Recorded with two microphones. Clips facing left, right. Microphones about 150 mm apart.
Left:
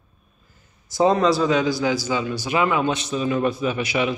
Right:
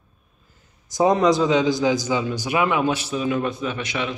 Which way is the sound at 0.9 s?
15° right (ahead or behind).